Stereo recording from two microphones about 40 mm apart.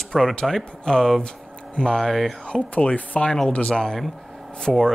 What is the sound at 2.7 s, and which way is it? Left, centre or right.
Speech, left.